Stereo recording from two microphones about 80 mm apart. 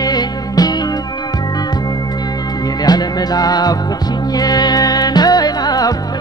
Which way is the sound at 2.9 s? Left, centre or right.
Left.